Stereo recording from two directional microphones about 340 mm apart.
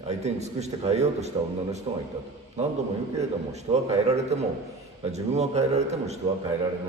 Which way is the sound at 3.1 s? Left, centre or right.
Centre.